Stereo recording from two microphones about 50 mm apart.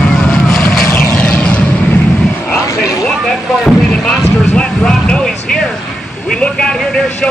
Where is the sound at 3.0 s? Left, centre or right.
Centre.